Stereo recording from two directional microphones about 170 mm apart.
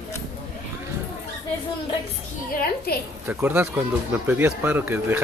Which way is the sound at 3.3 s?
10° right (ahead or behind).